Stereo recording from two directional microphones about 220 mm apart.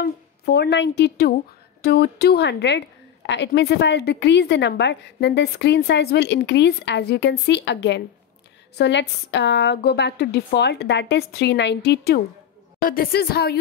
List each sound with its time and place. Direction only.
0.0 s a woman's voice: 45° left (ahead or behind)